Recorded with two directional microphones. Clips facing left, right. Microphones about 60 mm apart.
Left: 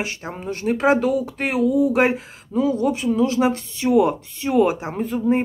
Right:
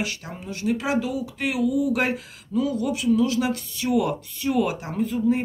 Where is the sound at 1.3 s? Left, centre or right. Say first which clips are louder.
Left 1 dB; left.